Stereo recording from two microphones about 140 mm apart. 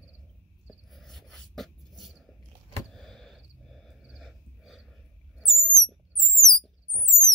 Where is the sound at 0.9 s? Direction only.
Centre (ahead or behind).